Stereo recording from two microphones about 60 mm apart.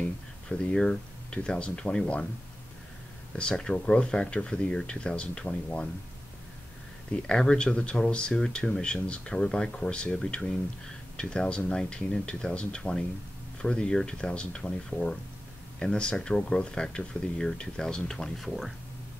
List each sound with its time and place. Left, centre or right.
0.5 s speech: centre
3.3 s speech: centre
7.1 s speech: centre